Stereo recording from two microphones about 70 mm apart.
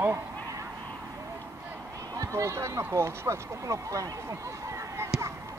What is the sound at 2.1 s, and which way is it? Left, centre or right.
Speech, right.